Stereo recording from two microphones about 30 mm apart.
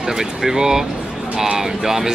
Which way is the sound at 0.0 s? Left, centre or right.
Centre.